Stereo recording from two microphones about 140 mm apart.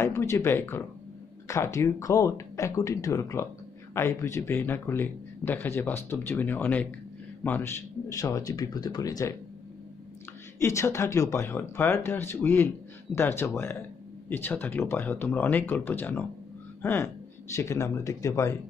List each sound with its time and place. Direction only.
0.0 s a man's voice: 20° left (ahead or behind)
10.6 s a man's voice: 20° left (ahead or behind)